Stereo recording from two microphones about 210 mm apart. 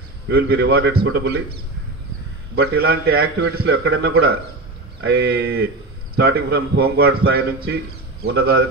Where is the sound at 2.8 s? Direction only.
50° right (ahead or behind).